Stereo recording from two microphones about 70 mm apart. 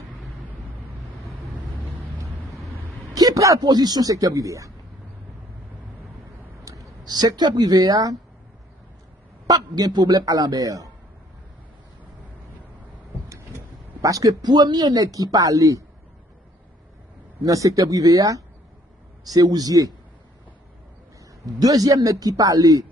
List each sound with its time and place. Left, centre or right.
3.2 s speech: right
3.6 s a man's voice: right
6.7 s a sound: right
7.1 s speech: right
9.5 s a man's voice: right
14.0 s speech: right
15.3 s a man's voice: right
17.4 s a man's voice: right
21.5 s a man's voice: right